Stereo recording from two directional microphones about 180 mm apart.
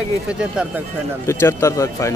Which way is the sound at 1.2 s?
15° left (ahead or behind).